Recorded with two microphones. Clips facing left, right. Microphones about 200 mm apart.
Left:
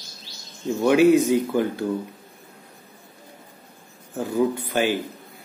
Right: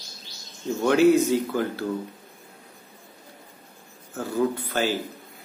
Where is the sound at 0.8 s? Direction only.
15° left (ahead or behind).